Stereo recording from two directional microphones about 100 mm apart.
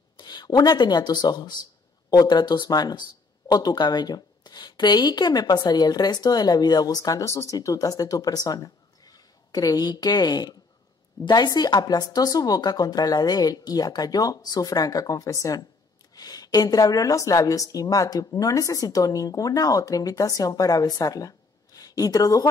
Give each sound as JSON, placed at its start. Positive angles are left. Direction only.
{"t": 0.2, "sound": "a woman's voice", "side_deg": 45}